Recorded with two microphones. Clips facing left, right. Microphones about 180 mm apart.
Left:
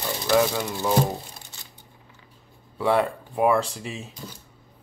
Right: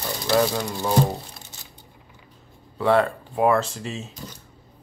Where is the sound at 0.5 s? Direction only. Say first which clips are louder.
Even; 15° right (ahead or behind).